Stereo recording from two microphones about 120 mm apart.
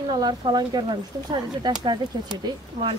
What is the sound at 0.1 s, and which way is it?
Speech, 35° right (ahead or behind).